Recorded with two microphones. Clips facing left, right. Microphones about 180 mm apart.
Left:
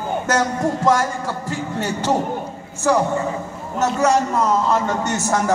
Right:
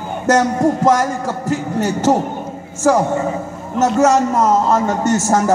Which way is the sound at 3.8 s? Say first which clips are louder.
Right 4 dB; 45° right (ahead or behind).